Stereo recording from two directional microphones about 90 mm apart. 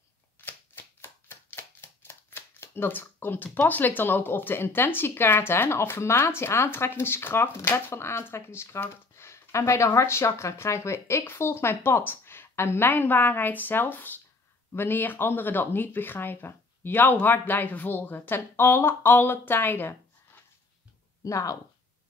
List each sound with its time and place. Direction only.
0.5 s shuffling cards: 25° left (ahead or behind)
3.5 s speech: 20° left (ahead or behind)
21.2 s speech: 40° left (ahead or behind)